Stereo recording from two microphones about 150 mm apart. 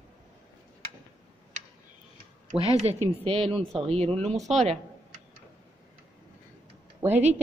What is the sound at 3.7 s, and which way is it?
Speech, centre (ahead or behind).